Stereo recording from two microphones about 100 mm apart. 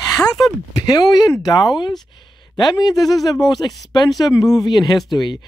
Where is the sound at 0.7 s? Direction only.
40° left (ahead or behind).